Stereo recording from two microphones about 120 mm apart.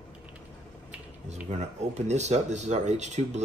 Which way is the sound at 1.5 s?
70° right (ahead or behind).